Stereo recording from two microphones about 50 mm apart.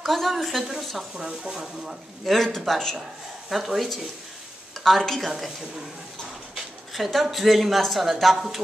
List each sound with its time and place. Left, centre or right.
0.0 s a woman's voice: centre
2.3 s speech: centre
3.4 s a woman's voice: centre
4.8 s a woman's voice: centre
6.5 s speech: centre